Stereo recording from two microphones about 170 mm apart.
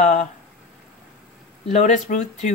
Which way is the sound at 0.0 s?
45° left (ahead or behind).